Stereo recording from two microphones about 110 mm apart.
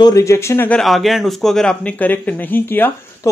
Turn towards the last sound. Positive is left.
turn(degrees=20)  # may be behind; listen again after turning